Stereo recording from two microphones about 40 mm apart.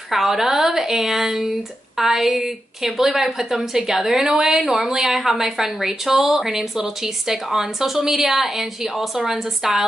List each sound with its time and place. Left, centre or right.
0.1 s a woman's voice: centre